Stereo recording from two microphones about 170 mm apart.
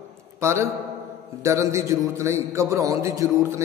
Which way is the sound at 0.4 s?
15° right (ahead or behind).